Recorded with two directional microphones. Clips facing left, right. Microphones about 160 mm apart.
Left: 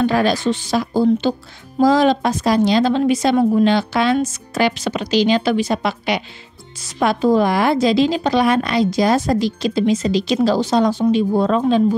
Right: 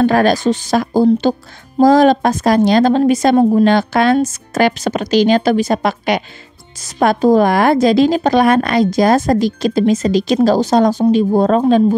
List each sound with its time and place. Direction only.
0.0 s a woman's voice: 50° right (ahead or behind)